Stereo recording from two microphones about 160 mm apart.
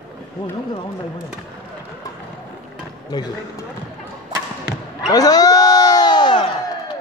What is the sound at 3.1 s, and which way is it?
Speech, 25° left (ahead or behind).